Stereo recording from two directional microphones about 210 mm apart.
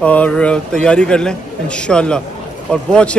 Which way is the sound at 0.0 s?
5° left (ahead or behind).